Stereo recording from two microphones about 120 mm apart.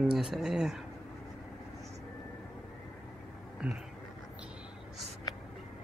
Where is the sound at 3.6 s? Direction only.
10° right (ahead or behind).